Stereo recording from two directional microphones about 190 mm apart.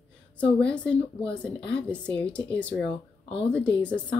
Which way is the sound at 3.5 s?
5° left (ahead or behind).